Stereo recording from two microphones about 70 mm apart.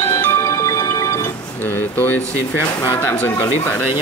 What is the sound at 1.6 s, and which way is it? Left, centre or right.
Speech, left.